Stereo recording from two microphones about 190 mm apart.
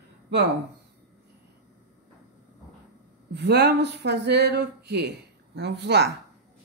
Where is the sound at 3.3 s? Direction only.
60° right (ahead or behind).